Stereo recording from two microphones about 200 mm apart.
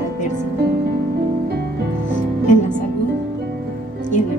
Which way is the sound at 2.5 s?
40° left (ahead or behind).